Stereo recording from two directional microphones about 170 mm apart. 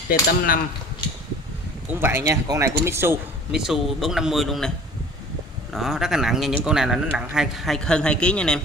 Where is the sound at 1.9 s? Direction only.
15° right (ahead or behind).